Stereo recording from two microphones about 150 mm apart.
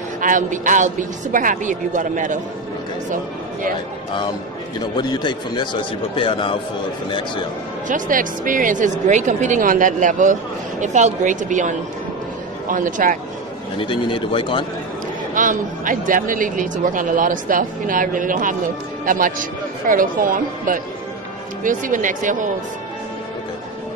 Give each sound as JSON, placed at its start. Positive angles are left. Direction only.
{"t": 0.2, "sound": "a man's voice", "side_deg": -60}
{"t": 4.7, "sound": "a man's voice", "side_deg": 30}
{"t": 7.9, "sound": "a man's voice", "side_deg": -65}
{"t": 13.7, "sound": "a man's voice", "side_deg": 35}
{"t": 15.3, "sound": "a man's voice", "side_deg": -60}